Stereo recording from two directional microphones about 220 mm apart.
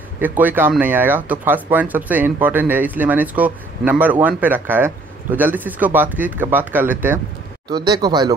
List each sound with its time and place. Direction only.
0.2 s speech: 10° right (ahead or behind)
7.7 s speech: 20° right (ahead or behind)